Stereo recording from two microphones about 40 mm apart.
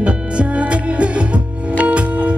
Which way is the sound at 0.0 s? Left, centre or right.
Right.